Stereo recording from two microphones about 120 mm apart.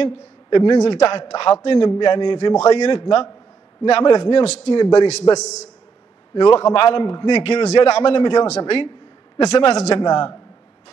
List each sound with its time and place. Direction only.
0.0 s a man's voice: 45° left (ahead or behind)
4.7 s a man's voice: 35° left (ahead or behind)
5.4 s a man's voice: 75° left (ahead or behind)
6.3 s a man's voice: 45° left (ahead or behind)
7.4 s a man's voice: 55° left (ahead or behind); by 8.5 s 40° left (ahead or behind)
8.5 s a woman's voice: 60° left (ahead or behind)
9.8 s a man's voice: 40° left (ahead or behind)